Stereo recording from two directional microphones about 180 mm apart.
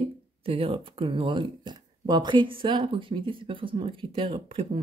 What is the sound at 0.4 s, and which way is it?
Speech, 30° right (ahead or behind).